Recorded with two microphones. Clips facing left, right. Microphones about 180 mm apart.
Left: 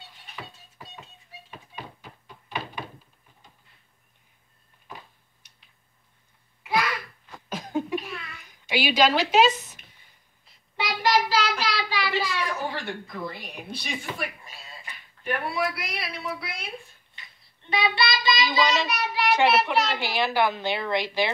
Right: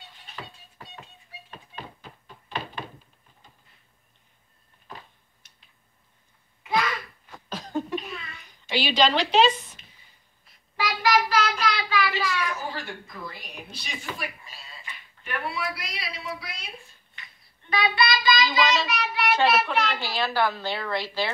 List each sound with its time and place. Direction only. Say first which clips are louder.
1.5 s thunk: even; 10° left (ahead or behind)
6.6 s babbling: even; 10° left (ahead or behind)
7.4 s a sound: left 1 dB; 10° left (ahead or behind)
8.6 s a woman's voice: left 1 dB; 10° left (ahead or behind)
10.8 s child singing: even; 25° left (ahead or behind)
12.8 s a woman's voice: left 5 dB; 60° left (ahead or behind)
17.6 s child singing: right 1 dB; 25° left (ahead or behind)
19.9 s a woman's voice: left 2 dB; 15° left (ahead or behind)